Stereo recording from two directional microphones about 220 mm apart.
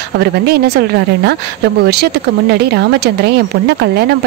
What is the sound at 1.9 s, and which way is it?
Speech, 45° right (ahead or behind).